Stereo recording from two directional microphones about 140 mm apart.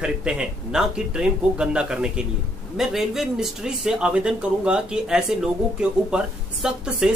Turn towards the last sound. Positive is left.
turn(degrees=-5)  # may be behind; listen again after turning